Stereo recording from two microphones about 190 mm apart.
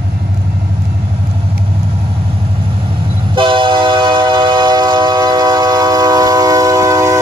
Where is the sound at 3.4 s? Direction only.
25° right (ahead or behind).